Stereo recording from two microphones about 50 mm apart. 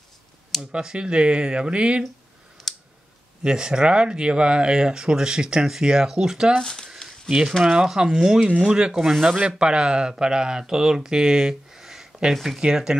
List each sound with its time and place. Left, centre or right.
0.6 s speech: centre
2.6 s clicking: centre
3.4 s speech: centre
6.6 s speech: centre
7.2 s speech: centre